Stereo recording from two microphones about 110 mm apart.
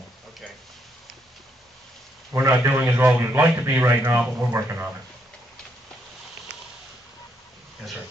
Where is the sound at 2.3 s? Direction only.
25° right (ahead or behind).